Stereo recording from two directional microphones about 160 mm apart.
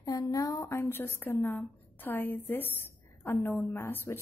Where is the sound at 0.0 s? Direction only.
20° left (ahead or behind).